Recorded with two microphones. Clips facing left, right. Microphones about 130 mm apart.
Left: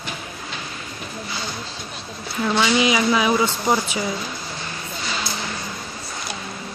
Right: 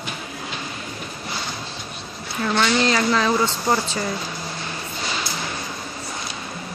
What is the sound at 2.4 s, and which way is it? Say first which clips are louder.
Speech: left 1 dB; 5° left (ahead or behind).